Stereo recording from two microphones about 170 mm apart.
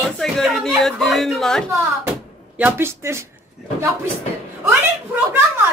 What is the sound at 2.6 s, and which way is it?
Speech, 15° right (ahead or behind).